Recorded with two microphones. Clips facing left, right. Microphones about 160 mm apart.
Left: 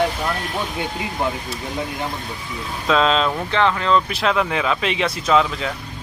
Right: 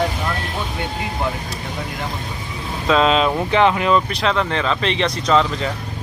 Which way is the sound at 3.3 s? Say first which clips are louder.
Right 4 dB; 15° right (ahead or behind).